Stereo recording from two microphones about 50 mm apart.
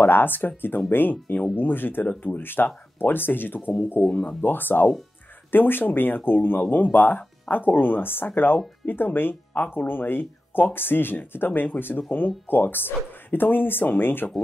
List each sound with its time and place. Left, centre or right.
0.0 s speech: left
4.0 s speech: centre
4.4 s speech: left